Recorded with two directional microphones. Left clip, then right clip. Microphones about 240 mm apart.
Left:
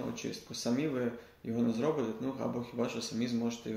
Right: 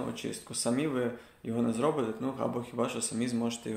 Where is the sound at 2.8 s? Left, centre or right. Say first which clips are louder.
Right 3 dB; left.